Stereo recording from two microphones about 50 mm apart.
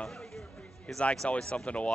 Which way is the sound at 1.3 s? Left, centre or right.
Left.